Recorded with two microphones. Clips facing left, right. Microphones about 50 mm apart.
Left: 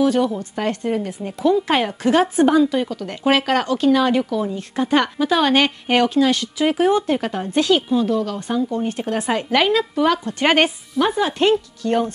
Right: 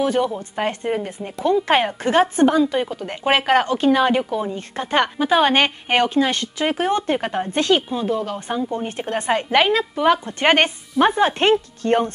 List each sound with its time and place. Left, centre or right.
0.0 s a woman's voice: centre
2.4 s a woman's voice: centre
2.7 s a woman's voice: right
11.0 s speech: right